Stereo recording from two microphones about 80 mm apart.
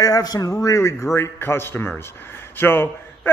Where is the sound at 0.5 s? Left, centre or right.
Left.